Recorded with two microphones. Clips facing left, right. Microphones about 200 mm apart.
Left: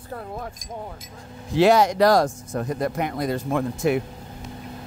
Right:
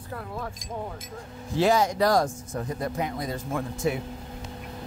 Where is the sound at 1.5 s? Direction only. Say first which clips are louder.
Left 5 dB; 70° left (ahead or behind).